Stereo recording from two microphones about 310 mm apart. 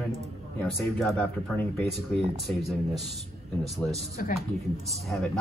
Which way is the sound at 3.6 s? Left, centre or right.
Centre.